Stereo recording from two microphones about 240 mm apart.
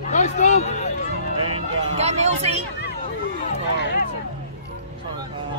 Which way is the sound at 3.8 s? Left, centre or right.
Left.